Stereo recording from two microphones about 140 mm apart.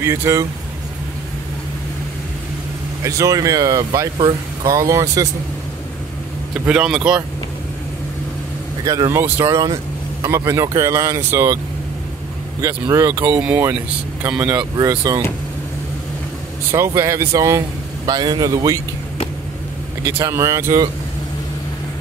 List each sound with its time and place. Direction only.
0.0 s speech: 20° right (ahead or behind)
3.0 s speech: 25° right (ahead or behind)
6.6 s speech: 5° right (ahead or behind)
8.8 s speech: 25° right (ahead or behind)
12.6 s speech: 25° right (ahead or behind)
16.7 s speech: 20° right (ahead or behind)
20.0 s speech: 20° right (ahead or behind)